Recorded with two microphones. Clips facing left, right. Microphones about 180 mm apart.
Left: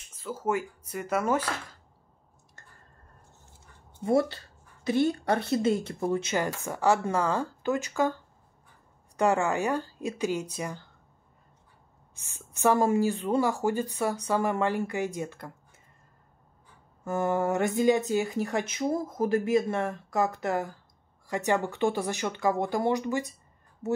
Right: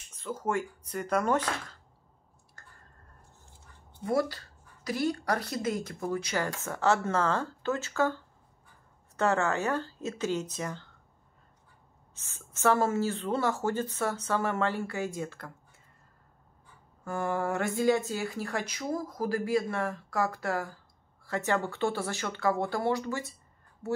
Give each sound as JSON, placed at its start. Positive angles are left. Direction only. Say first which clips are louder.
{"t": 0.1, "sound": "speech", "louder": "left 2 dB", "side_deg": 5}
{"t": 4.0, "sound": "speech", "louder": "left 4 dB", "side_deg": 25}
{"t": 12.2, "sound": "speech", "louder": "left 3 dB", "side_deg": 15}
{"t": 17.0, "sound": "speech", "louder": "left 4 dB", "side_deg": 20}